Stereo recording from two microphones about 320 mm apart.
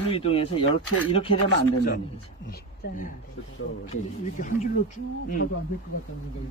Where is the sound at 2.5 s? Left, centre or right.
Left.